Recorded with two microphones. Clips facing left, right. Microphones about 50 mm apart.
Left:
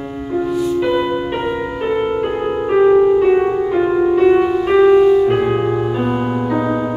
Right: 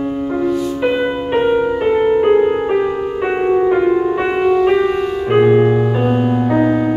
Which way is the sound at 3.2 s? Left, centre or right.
Right.